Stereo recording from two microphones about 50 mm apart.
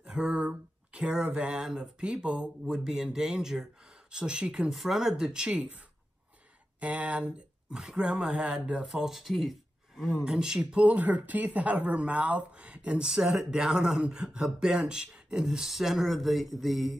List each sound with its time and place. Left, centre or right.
0.1 s a sound: centre
1.0 s speech: centre
1.4 s speech: right
4.7 s speech: centre; by 9.0 s right
9.0 s speech: centre
10.2 s speech: centre
13.0 s speech: centre